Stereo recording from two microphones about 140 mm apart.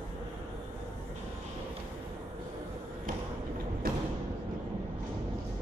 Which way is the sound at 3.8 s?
90° right.